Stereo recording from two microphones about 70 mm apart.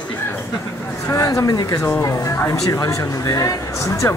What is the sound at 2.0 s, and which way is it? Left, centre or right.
Speech, left.